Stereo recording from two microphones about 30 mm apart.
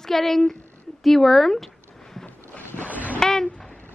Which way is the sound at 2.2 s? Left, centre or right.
Left.